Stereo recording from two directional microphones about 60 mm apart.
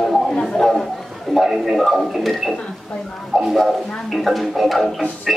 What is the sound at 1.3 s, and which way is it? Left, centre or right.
Speech, centre.